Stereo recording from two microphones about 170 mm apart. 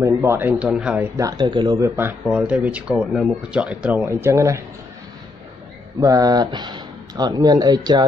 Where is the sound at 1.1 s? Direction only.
25° right (ahead or behind).